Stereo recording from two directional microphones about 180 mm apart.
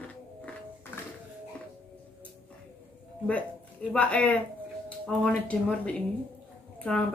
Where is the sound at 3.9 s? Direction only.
5° left (ahead or behind).